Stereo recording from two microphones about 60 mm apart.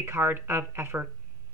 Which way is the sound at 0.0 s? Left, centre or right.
Right.